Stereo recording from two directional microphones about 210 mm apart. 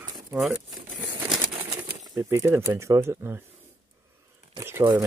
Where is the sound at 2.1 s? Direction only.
15° right (ahead or behind).